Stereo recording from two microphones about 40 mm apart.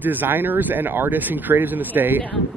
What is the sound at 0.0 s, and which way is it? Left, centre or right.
Speech, right.